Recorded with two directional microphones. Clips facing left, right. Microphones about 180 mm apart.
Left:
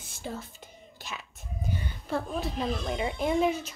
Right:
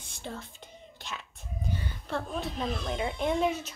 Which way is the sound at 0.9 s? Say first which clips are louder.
Left 1 dB; 5° left (ahead or behind).